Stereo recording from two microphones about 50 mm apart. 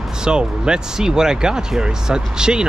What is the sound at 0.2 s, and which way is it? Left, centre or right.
Speech, centre.